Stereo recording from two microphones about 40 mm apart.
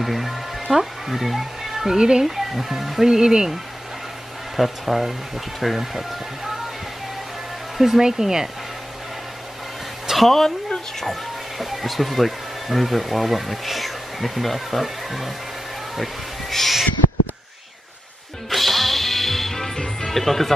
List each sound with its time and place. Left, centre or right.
0.0 s speech: centre
2.2 s speech: centre
3.1 s speech: centre
4.6 s speech: centre
7.7 s speech: centre
10.0 s a sound: centre
11.0 s speech: centre
18.5 s music: centre
20.1 s speech: centre